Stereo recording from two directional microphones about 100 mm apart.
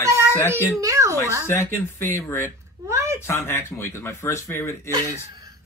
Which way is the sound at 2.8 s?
30° right (ahead or behind).